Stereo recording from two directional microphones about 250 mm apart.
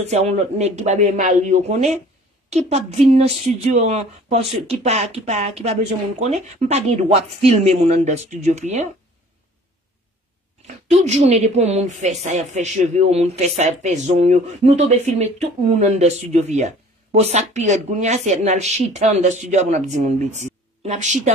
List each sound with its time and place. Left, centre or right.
0.0 s speech: right
10.9 s speech: right